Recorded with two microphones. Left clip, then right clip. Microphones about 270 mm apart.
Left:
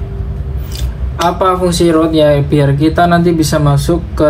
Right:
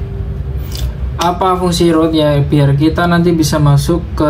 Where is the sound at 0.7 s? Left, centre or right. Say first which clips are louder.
Even; centre.